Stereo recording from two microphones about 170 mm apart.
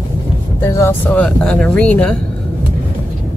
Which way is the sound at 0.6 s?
15° left (ahead or behind).